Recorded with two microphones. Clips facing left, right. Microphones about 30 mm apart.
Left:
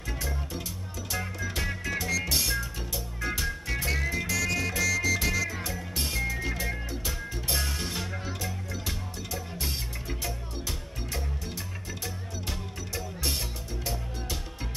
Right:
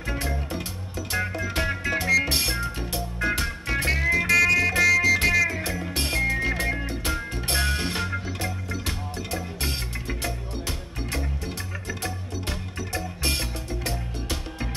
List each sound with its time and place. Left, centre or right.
0.0 s music: right
5.2 s music: right